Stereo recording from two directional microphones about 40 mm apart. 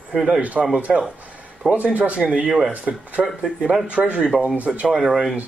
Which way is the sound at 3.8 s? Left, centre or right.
Right.